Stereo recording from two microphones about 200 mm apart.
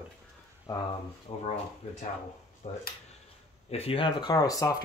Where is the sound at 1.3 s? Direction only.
30° left (ahead or behind).